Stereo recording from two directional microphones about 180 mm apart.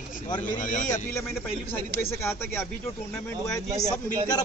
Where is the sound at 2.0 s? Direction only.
15° left (ahead or behind).